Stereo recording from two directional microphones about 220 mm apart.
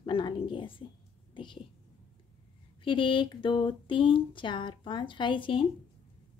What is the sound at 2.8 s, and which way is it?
Speech, 20° left (ahead or behind).